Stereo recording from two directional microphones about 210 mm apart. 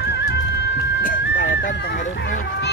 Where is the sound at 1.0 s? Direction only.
40° left (ahead or behind).